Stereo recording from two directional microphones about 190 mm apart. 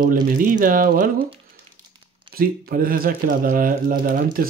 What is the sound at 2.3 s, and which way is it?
Speech, 50° right (ahead or behind).